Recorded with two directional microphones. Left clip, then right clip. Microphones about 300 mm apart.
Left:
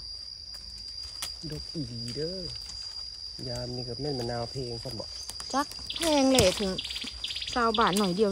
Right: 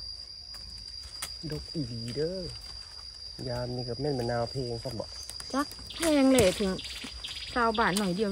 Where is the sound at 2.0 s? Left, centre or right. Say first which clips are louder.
Right 2 dB; centre.